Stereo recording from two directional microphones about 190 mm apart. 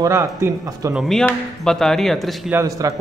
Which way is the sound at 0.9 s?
Centre (ahead or behind).